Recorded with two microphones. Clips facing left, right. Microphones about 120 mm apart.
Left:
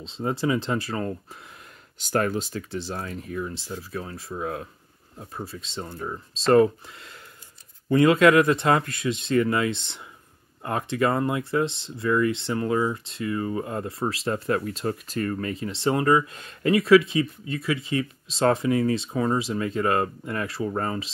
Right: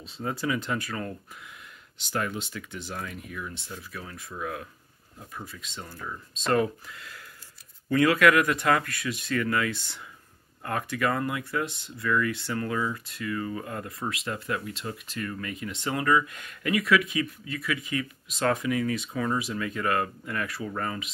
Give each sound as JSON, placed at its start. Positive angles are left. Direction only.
{"t": 0.0, "sound": "speech", "side_deg": 25}
{"t": 2.0, "sound": "speech", "side_deg": 45}